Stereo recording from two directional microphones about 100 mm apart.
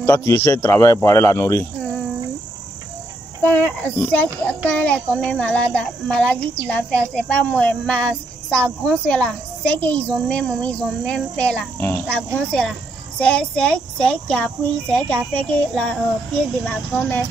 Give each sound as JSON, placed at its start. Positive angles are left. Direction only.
{"t": 0.0, "sound": "a man's voice", "side_deg": 25}
{"t": 3.4, "sound": "a child's voice", "side_deg": 15}